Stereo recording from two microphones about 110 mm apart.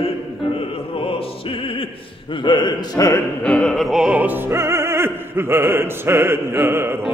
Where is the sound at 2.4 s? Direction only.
45° left (ahead or behind).